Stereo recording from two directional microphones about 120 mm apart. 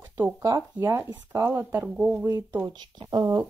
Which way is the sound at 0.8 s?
20° right (ahead or behind).